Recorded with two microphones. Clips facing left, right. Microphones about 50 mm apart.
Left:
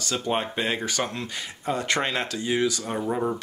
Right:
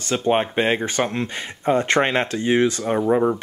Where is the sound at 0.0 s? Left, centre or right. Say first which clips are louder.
Right 7 dB; right.